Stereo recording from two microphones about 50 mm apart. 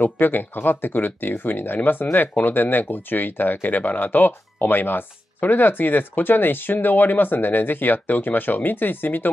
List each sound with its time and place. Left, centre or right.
0.0 s speech: left